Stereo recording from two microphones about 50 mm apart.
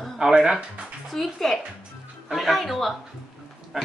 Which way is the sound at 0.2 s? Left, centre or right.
Centre.